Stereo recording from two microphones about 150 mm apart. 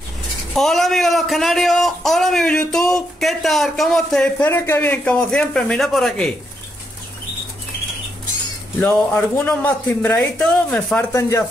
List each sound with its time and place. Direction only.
0.6 s a man's voice: centre (ahead or behind)
8.8 s a man's voice: 10° left (ahead or behind)
11.1 s speech: 20° left (ahead or behind)